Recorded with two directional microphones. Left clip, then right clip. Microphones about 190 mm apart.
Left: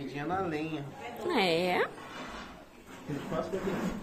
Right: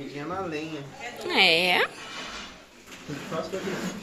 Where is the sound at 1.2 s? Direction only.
15° left (ahead or behind).